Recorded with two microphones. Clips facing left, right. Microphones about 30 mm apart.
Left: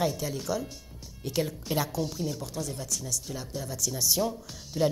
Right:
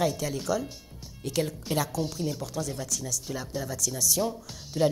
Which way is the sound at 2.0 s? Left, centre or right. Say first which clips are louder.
Right 1 dB; centre.